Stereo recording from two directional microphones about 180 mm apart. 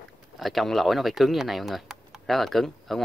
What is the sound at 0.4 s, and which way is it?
Speech, centre (ahead or behind).